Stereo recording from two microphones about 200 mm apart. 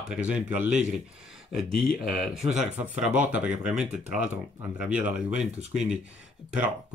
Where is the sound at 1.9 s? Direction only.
45° left (ahead or behind).